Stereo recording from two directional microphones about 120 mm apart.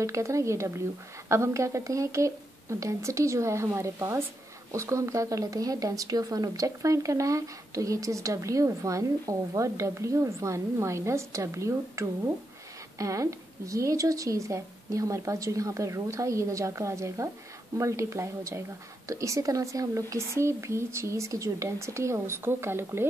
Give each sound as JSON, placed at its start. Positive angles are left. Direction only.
{"t": 0.0, "sound": "speech", "side_deg": -25}